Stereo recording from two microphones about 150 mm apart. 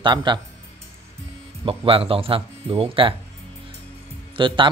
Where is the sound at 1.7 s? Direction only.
40° right (ahead or behind).